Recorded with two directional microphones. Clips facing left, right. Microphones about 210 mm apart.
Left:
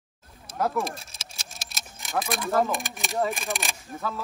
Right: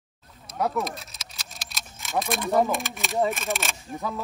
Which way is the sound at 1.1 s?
30° left (ahead or behind).